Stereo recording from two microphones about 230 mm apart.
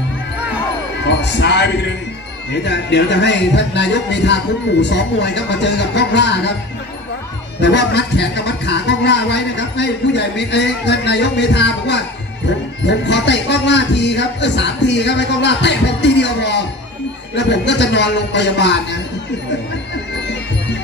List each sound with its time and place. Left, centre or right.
1.0 s a man's voice: left
7.6 s speech: left